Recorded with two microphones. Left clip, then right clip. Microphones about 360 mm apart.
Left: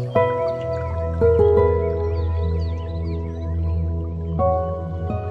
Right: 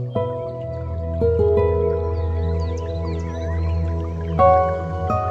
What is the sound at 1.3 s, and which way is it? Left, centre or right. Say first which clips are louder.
Music: left 2 dB; centre.